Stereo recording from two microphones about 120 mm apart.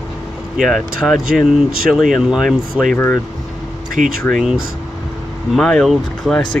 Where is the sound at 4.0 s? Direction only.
90° right.